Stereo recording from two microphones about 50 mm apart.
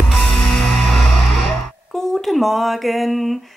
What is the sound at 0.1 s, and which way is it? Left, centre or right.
Music, centre.